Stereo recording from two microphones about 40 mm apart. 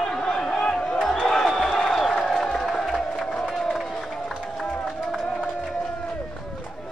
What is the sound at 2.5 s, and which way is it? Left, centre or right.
Music, centre.